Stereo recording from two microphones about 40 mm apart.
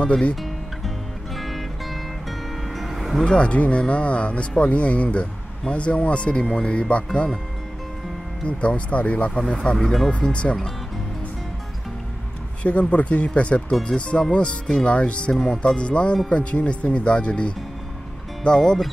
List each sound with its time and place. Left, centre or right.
0.0 s speech: left
0.4 s music: centre
3.3 s speech: left
8.5 s speech: left
9.3 s speech: centre
9.8 s speech: centre
10.2 s speech: left
12.6 s speech: left
18.4 s speech: centre